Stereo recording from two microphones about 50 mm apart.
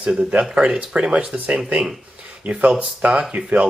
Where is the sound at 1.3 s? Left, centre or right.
Right.